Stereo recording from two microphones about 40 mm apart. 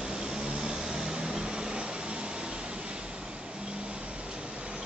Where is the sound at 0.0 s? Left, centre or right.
Centre.